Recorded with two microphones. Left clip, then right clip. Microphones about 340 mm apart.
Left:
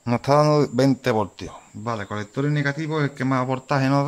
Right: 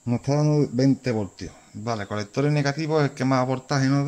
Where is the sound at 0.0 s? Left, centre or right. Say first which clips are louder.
Left 7 dB; left.